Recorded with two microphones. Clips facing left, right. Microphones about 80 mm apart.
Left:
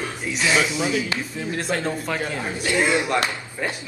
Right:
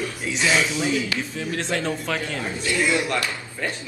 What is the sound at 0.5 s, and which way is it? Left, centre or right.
Speech, centre.